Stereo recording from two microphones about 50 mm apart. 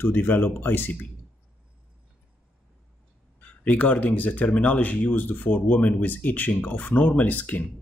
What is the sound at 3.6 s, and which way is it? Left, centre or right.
Speech, left.